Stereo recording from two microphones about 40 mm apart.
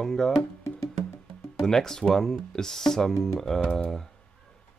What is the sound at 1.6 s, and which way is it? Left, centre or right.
Speech, centre.